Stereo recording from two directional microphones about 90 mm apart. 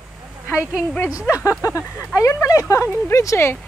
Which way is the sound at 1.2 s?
35° left (ahead or behind).